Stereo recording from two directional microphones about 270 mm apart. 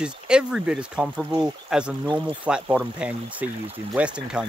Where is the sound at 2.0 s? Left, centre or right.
Centre.